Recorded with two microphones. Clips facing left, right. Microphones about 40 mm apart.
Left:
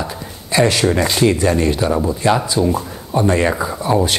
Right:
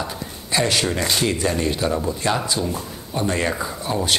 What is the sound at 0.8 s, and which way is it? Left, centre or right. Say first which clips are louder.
Speech: left 7 dB; left.